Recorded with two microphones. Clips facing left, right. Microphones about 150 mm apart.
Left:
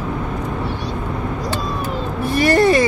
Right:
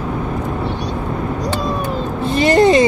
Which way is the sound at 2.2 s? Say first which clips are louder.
Right 2 dB; 20° right (ahead or behind).